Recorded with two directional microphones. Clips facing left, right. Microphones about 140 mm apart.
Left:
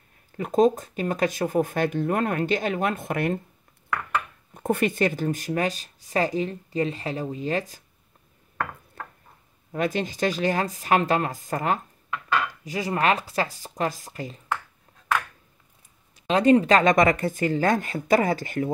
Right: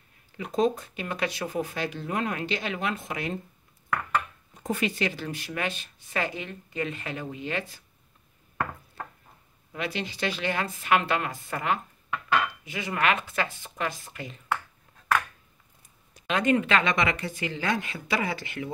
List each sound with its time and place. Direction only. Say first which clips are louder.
0.4 s speech: left 5 dB; 45° left (ahead or behind)
4.6 s speech: left 5 dB; 55° left (ahead or behind)
9.7 s speech: left 7 dB; 45° left (ahead or behind)
16.3 s speech: left 6 dB; 35° left (ahead or behind)